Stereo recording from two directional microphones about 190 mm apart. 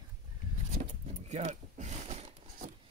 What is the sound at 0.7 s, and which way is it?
Speech, 35° right (ahead or behind).